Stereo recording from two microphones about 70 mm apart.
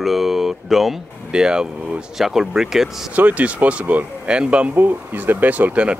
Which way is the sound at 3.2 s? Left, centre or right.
Right.